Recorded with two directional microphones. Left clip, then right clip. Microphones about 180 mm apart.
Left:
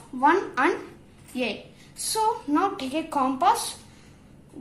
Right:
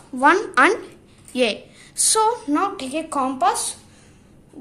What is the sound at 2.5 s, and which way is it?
A woman's voice, 35° right (ahead or behind).